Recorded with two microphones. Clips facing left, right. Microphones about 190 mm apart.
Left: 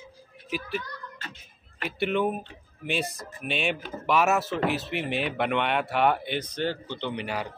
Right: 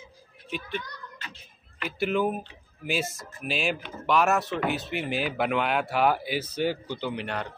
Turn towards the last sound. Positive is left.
turn(degrees=5)  # may be behind; listen again after turning